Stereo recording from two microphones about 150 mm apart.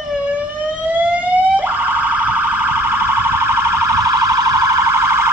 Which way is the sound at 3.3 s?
15° right (ahead or behind).